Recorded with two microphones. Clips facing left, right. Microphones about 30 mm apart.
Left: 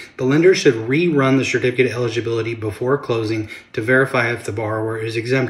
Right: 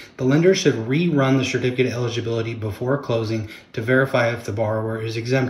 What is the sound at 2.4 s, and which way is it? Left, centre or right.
Speech, left.